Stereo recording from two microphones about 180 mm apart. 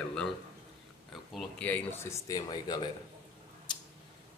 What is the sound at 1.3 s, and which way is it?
Speech, 10° left (ahead or behind).